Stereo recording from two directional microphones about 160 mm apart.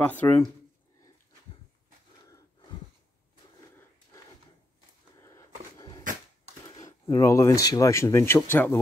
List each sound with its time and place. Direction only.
0.2 s speech: 20° left (ahead or behind)
5.8 s dog: 25° left (ahead or behind)
6.8 s speech: 20° left (ahead or behind)